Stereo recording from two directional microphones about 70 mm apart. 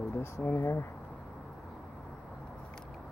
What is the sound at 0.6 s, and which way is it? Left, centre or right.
Speech, left.